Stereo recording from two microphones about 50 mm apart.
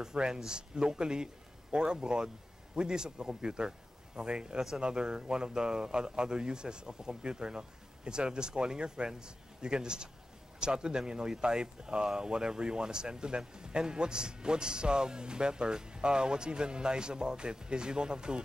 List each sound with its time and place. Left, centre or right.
0.0 s a man's voice: centre